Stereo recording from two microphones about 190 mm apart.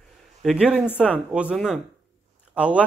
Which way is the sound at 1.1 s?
5° right (ahead or behind).